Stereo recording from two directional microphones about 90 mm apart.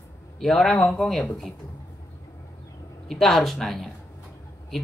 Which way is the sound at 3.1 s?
Centre (ahead or behind).